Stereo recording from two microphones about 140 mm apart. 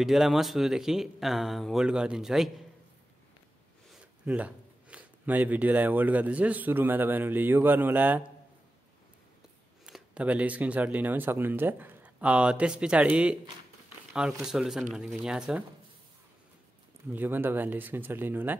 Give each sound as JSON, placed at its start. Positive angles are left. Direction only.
{"t": 0.0, "sound": "speech", "side_deg": 0}
{"t": 4.3, "sound": "speech", "side_deg": -10}
{"t": 9.8, "sound": "speech", "side_deg": -5}
{"t": 13.8, "sound": "a sound", "side_deg": -5}
{"t": 14.4, "sound": "speech", "side_deg": -5}
{"t": 17.1, "sound": "speech", "side_deg": -15}